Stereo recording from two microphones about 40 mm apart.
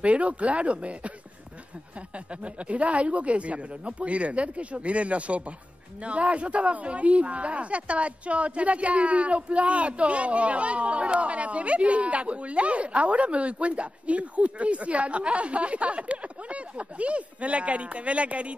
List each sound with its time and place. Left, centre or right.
0.0 s speech: right
2.1 s speech: right